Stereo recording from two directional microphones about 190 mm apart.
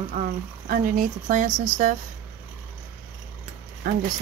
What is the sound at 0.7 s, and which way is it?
Speech, 45° right (ahead or behind).